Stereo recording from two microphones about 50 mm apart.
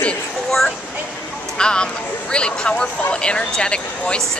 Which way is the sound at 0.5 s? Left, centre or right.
Centre.